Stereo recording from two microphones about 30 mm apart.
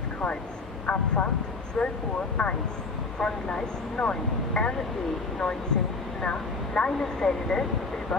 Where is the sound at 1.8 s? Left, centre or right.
Centre; by 4.7 s left.